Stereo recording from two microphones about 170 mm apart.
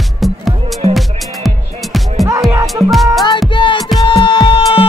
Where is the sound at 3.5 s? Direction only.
30° left (ahead or behind).